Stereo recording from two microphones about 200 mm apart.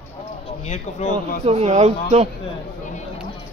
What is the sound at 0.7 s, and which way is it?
Speech, 35° left (ahead or behind).